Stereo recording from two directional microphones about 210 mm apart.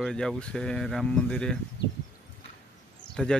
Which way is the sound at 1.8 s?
55° left (ahead or behind).